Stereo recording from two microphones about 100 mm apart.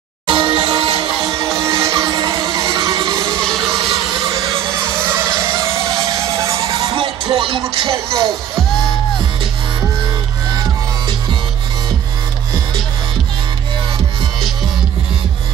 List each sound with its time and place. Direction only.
0.3 s music: 55° right (ahead or behind)
1.3 s music: 35° right (ahead or behind)
3.6 s a sound: 45° right (ahead or behind)
5.0 s music: 25° right (ahead or behind); by 7.6 s 60° right (ahead or behind)
7.7 s speech: 60° right (ahead or behind)